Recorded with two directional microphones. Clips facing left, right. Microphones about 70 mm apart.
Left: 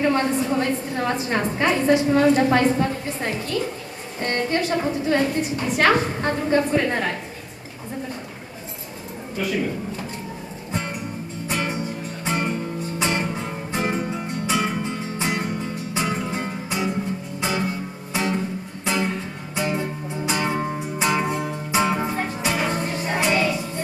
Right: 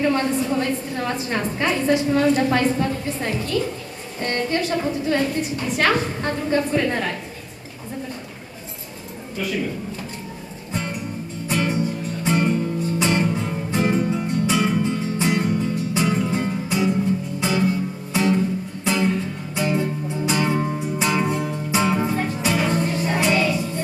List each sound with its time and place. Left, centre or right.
0.0 s a woman's voice: left
9.4 s a woman's voice: left
10.7 s music: left